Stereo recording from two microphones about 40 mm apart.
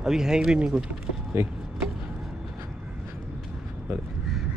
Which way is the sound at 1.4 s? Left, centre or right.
Right.